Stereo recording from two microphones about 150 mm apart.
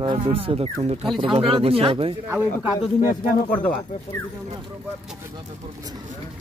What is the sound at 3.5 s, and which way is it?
Speech, 10° left (ahead or behind).